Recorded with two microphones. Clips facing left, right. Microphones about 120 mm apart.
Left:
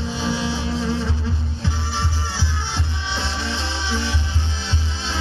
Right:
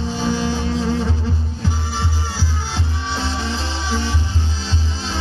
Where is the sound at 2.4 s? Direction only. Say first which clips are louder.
Right 2 dB; 40° right (ahead or behind).